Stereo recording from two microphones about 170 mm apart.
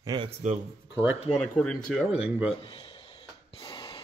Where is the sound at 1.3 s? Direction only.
Centre (ahead or behind).